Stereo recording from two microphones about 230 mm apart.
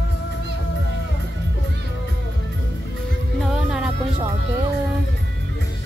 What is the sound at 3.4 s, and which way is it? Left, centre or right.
Music, centre.